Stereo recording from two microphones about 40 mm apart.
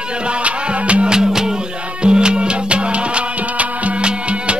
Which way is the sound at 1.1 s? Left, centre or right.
Centre.